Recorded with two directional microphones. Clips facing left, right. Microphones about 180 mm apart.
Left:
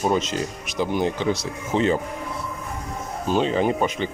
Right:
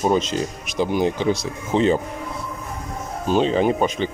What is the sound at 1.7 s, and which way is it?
Speech, 25° right (ahead or behind).